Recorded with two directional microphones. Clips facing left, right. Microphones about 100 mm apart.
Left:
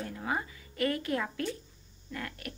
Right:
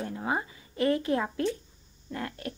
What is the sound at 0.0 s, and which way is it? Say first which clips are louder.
A woman's voice: right 3 dB; 25° right (ahead or behind).